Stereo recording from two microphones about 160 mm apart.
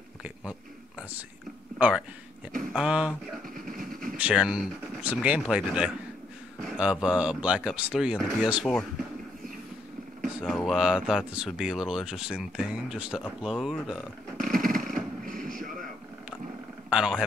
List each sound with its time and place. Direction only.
0.2 s a sound: 5° right (ahead or behind)
1.8 s speech: 5° right (ahead or behind)
3.4 s a sound: 60° right (ahead or behind)
4.2 s speech: 5° right (ahead or behind)
10.4 s speech: 5° left (ahead or behind)
14.3 s vehicle: 60° right (ahead or behind)
16.9 s a man's voice: 5° right (ahead or behind)